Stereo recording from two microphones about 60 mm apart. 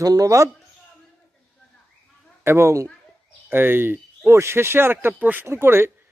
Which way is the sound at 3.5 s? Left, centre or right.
Right.